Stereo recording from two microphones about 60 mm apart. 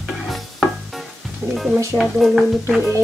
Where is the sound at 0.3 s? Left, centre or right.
Centre.